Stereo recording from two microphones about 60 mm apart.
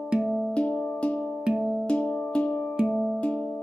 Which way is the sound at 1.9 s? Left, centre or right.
Centre.